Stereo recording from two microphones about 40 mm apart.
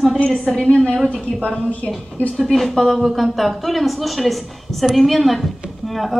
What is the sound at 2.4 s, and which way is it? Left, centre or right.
A woman's voice, centre.